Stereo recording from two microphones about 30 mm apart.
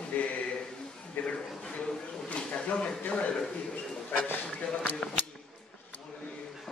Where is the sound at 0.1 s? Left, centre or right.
Left.